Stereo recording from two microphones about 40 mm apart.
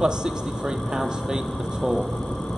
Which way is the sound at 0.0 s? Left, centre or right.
Centre.